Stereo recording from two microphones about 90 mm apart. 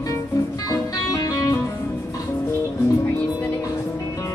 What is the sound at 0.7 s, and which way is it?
Music, 40° left (ahead or behind).